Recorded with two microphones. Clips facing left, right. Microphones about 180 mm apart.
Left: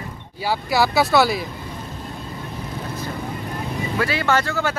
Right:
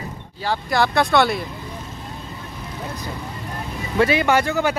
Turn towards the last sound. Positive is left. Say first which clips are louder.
# right 2 dB
turn(degrees=-15)  # may be behind; listen again after turning